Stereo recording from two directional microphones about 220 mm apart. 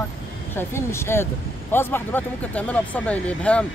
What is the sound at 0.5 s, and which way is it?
Speech, 10° left (ahead or behind).